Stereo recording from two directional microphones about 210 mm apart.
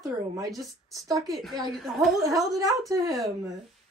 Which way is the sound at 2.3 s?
15° right (ahead or behind).